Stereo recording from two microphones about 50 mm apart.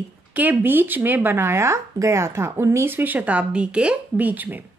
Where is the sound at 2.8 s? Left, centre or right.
Right.